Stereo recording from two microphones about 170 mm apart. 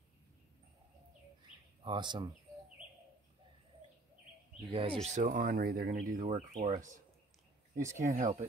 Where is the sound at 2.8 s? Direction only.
5° right (ahead or behind).